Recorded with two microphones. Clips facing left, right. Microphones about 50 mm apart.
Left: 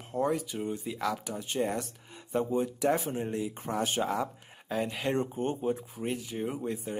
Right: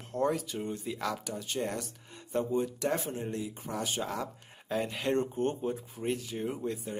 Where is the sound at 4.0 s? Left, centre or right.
Centre.